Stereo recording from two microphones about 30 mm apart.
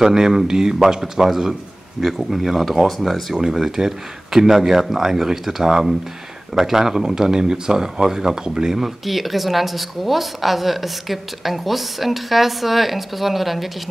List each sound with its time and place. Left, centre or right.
0.0 s speech: centre
3.3 s speech: centre